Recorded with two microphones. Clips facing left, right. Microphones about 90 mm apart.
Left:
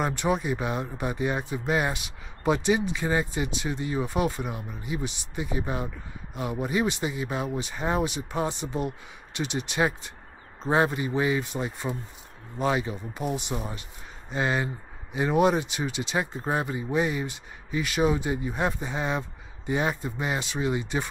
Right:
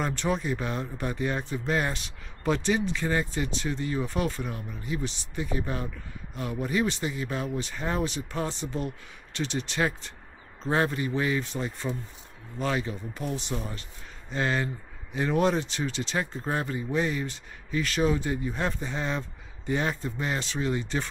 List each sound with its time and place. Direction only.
0.0 s speech: 15° left (ahead or behind)